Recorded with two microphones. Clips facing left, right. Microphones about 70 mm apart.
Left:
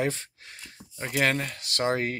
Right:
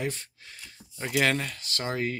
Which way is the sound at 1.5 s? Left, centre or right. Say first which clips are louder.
Left 5 dB; left.